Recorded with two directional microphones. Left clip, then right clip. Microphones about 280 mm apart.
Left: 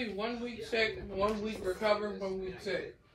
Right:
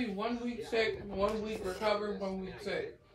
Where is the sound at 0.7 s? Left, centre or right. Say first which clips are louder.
Left 1 dB; right.